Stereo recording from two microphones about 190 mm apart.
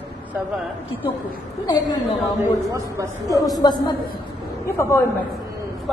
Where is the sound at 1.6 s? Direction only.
25° left (ahead or behind).